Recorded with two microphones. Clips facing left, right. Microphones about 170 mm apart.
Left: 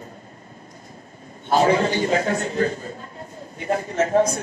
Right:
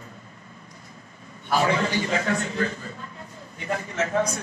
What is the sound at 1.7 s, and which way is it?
A man's voice, 45° left (ahead or behind).